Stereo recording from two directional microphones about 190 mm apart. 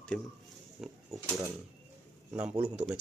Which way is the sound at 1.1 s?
15° right (ahead or behind).